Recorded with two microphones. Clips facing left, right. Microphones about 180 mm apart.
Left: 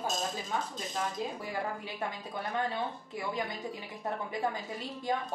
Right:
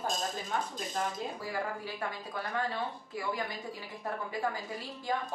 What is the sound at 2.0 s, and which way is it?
Speech, 20° left (ahead or behind).